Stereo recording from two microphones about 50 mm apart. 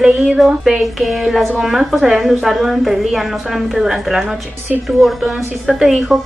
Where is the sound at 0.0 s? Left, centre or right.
Centre.